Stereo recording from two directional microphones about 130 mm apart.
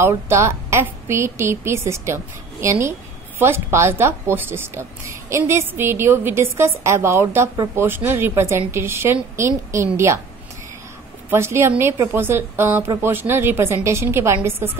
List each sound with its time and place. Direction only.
0.0 s speech: 20° right (ahead or behind)
11.2 s speech: 20° right (ahead or behind)